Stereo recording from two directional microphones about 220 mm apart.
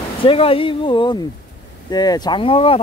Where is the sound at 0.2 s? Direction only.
25° left (ahead or behind).